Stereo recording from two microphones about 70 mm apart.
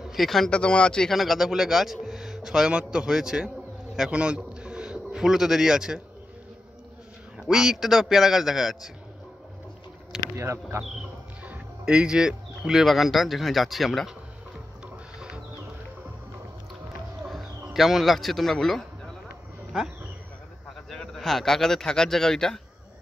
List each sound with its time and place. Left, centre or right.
0.0 s speech: centre
0.5 s speech: centre
1.1 s a man's voice: centre
7.3 s speech: centre
10.3 s speech: right
11.8 s speech: centre
15.1 s music: centre
17.3 s speech: centre
20.9 s speech: centre